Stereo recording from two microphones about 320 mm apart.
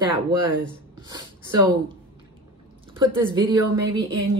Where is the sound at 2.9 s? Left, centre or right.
Centre.